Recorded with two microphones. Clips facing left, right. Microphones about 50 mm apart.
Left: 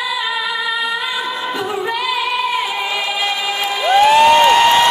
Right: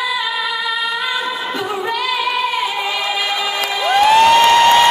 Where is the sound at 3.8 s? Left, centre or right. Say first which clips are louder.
Left 1 dB; centre.